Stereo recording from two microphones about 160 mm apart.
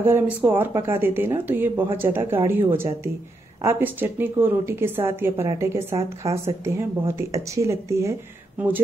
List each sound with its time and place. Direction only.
0.0 s speech: 15° right (ahead or behind)
3.6 s speech: 10° right (ahead or behind)